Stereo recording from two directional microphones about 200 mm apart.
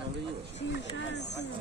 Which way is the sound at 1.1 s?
60° left (ahead or behind).